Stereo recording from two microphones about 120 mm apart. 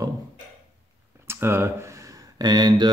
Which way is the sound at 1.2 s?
20° right (ahead or behind).